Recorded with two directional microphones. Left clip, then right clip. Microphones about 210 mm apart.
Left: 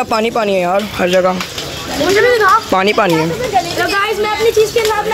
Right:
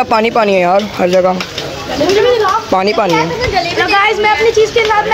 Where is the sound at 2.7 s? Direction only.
5° left (ahead or behind).